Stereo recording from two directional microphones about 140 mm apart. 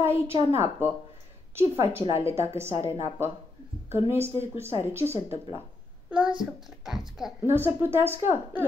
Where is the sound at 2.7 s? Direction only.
40° left (ahead or behind).